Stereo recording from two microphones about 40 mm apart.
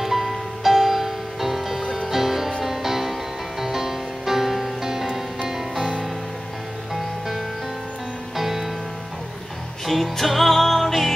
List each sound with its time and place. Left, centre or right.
0.0 s music: centre
5.4 s music: right
6.9 s music: centre
9.8 s music: centre